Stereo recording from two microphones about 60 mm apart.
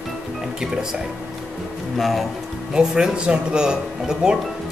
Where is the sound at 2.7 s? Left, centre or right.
Centre.